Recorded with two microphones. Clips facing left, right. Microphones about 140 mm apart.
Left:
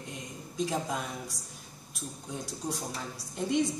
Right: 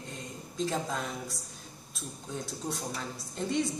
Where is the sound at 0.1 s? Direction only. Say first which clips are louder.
Even; 15° left (ahead or behind).